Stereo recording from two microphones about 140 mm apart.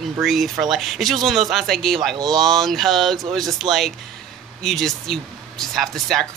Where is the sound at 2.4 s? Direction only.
Centre (ahead or behind).